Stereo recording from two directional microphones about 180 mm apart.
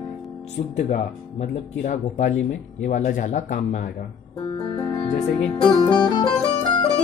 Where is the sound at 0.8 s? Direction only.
40° left (ahead or behind).